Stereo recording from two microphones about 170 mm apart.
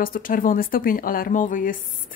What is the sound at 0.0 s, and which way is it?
Speech, 55° left (ahead or behind).